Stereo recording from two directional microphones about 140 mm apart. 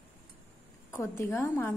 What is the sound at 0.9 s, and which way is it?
Speech, 20° left (ahead or behind).